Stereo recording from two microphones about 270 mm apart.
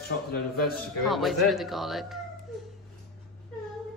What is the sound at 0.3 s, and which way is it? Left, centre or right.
Speech, left.